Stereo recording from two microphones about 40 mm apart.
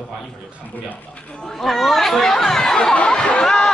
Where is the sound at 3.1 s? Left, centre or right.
Left.